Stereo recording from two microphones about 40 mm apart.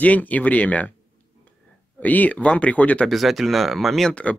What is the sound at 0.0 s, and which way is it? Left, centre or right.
Speech, left.